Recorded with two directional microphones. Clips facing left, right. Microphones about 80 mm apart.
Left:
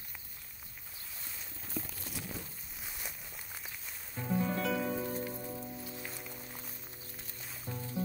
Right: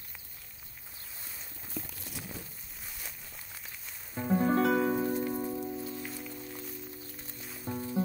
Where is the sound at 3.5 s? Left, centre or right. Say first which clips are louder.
Left 1 dB; centre.